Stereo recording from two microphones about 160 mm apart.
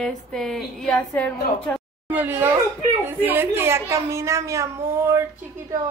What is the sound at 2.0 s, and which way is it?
A child's voice, 10° right (ahead or behind).